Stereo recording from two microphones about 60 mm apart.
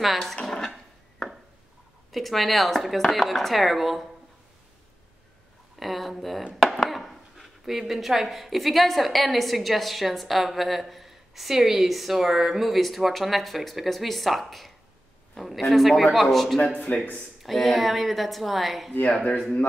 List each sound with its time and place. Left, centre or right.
0.0 s speech: centre
0.4 s a sound: centre
2.1 s speech: centre
5.8 s speech: centre
6.5 s chopping: centre
6.9 s speech: centre
16.8 s speech: centre
17.4 s speech: centre